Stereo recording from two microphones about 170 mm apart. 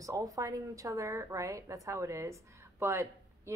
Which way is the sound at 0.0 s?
20° right (ahead or behind).